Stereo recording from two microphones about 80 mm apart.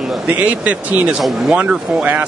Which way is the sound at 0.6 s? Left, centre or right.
Centre.